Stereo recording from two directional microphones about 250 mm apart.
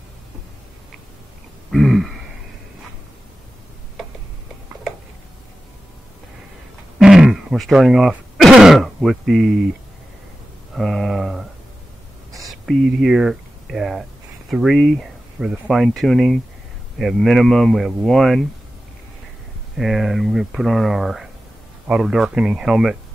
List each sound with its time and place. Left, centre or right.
1.7 s throat clearing: centre
7.0 s speech: centre
10.7 s speech: centre
12.4 s speech: centre
19.8 s speech: centre